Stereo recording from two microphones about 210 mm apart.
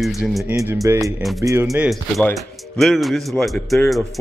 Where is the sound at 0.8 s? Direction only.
15° right (ahead or behind).